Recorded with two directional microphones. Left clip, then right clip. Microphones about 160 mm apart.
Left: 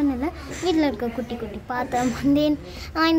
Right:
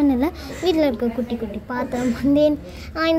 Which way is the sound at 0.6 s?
10° right (ahead or behind).